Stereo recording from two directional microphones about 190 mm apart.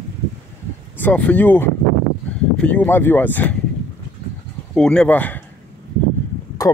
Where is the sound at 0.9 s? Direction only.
10° left (ahead or behind).